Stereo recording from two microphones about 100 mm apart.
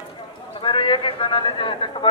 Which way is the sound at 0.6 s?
55° left (ahead or behind).